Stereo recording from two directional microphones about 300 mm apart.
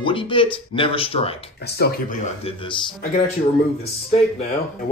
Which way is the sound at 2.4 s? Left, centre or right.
Centre.